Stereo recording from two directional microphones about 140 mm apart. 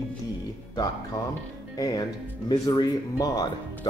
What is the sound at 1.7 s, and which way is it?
Speech, 25° left (ahead or behind).